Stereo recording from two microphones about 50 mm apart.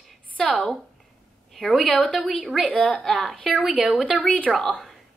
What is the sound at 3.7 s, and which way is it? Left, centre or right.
Speech, centre.